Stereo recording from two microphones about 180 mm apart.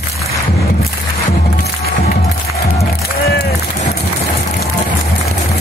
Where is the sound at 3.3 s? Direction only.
65° left (ahead or behind).